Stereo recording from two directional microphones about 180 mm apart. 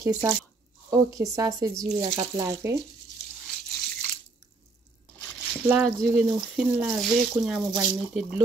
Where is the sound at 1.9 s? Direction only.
30° right (ahead or behind).